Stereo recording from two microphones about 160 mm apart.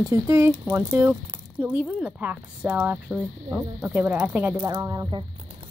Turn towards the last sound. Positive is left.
turn(degrees=-25)  # may be behind; listen again after turning